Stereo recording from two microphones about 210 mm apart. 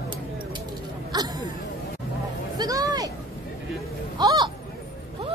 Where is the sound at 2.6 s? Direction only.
15° right (ahead or behind).